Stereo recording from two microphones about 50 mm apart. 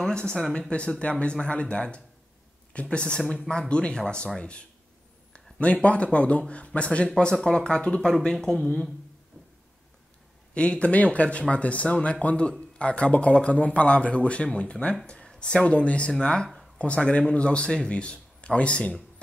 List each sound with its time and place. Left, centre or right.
0.0 s speech: centre
10.5 s speech: left